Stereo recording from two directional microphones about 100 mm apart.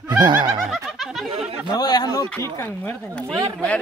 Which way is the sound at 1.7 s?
40° left (ahead or behind).